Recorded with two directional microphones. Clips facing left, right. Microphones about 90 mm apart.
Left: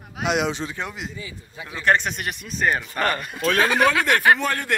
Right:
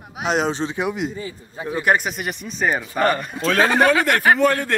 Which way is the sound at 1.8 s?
10° right (ahead or behind).